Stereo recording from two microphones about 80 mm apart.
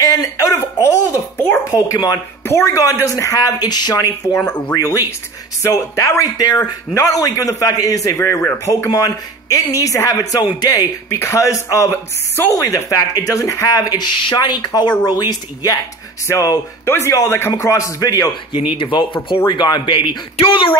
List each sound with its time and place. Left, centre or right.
0.0 s a sound: left
1.7 s speech: left
2.4 s speech: left
2.7 s speech: left
3.6 s speech: left
4.7 s speech: left
6.4 s speech: left
6.9 s speech: left
8.2 s speech: left
8.6 s speech: left
11.1 s speech: left
16.3 s speech: left
18.7 s speech: left